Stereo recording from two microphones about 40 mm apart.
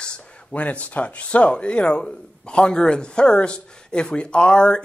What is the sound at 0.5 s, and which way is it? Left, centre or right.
Speech, left.